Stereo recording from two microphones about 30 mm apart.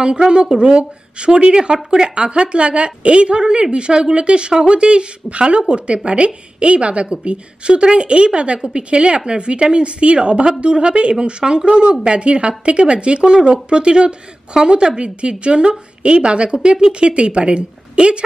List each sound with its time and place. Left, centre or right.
0.0 s speech: right